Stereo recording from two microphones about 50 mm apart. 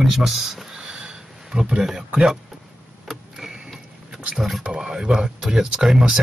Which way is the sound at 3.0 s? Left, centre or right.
Centre.